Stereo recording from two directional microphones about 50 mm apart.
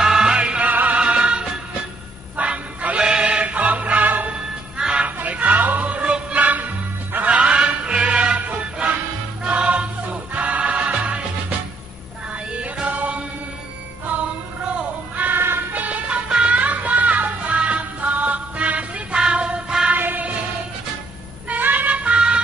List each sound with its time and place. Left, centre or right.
0.0 s music: centre; by 4.3 s right
4.3 s music: centre
5.0 s music: right
7.2 s music: right
12.8 s chant: right
15.1 s music: right; by 19.9 s centre
19.9 s music: right
21.5 s music: right